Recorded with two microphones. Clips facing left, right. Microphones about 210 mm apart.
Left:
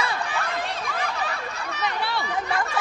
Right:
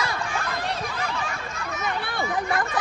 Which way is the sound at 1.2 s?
35° left (ahead or behind).